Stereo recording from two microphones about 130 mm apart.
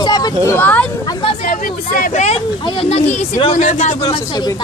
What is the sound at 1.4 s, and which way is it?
Speech, 90° left.